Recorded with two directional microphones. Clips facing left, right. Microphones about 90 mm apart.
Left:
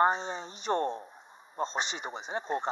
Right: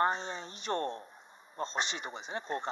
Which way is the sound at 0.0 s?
15° left (ahead or behind).